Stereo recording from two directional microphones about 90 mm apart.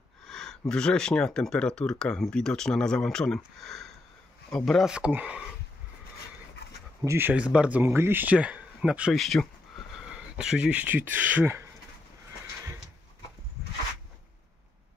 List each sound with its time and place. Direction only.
0.2 s speech: 5° left (ahead or behind)
4.8 s speech: 10° right (ahead or behind)
7.1 s speech: 25° right (ahead or behind)
7.3 s speech: 15° right (ahead or behind)
7.8 s speech: 25° right (ahead or behind)
9.1 s speech: centre (ahead or behind)
10.1 s speech: 10° right (ahead or behind)